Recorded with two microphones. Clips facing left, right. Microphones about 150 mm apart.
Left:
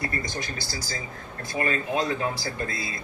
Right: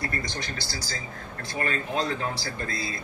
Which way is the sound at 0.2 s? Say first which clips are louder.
Left 1 dB; 50° left (ahead or behind).